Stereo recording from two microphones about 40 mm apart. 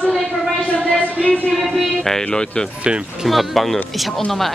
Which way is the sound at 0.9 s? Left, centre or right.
Left.